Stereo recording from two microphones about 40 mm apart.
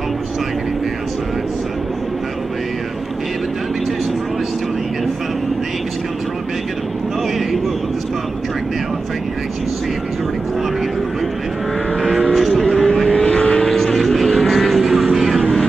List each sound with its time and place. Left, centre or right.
12.4 s vehicle: centre
12.6 s vehicle: centre
13.1 s vehicle: left
13.7 s vehicle: centre